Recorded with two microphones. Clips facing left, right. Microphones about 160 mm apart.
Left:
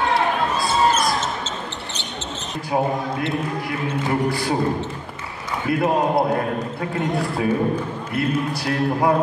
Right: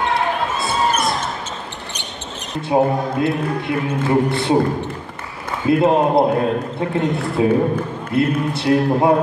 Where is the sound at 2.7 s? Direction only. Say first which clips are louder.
Right 5 dB; 25° right (ahead or behind).